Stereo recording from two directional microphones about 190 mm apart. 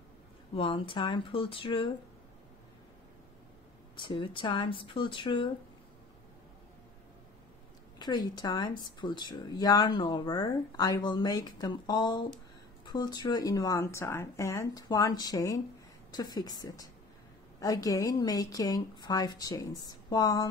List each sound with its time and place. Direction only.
0.6 s speech: 25° left (ahead or behind)
3.9 s speech: 25° left (ahead or behind)
8.0 s speech: 20° left (ahead or behind)